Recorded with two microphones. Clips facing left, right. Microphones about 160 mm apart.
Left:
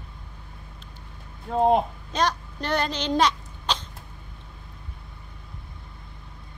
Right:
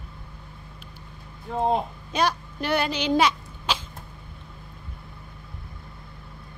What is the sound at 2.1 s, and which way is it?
Speech, 10° right (ahead or behind).